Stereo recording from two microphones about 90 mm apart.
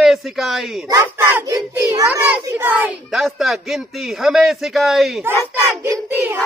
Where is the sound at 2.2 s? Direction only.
20° right (ahead or behind).